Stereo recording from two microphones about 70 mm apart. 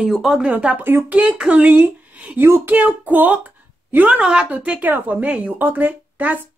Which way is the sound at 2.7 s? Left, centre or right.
Right.